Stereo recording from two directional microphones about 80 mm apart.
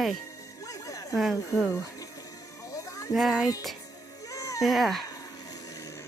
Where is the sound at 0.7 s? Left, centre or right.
Left.